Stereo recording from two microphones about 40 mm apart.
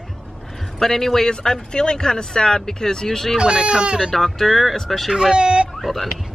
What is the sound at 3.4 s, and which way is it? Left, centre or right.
Speech, right.